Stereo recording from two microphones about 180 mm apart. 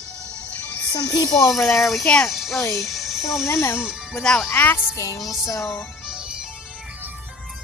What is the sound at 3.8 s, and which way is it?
A child's voice, centre (ahead or behind).